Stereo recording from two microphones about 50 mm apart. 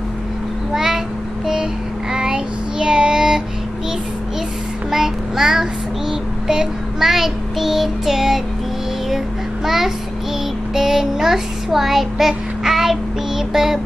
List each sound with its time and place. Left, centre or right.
0.7 s a sound: centre
2.1 s child singing: centre
4.9 s child singing: centre
9.7 s child singing: centre